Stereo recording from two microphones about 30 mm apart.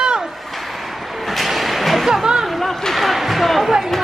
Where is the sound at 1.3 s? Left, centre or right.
Centre.